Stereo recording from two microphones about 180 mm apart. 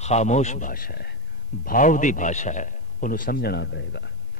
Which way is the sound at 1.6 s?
45° left (ahead or behind).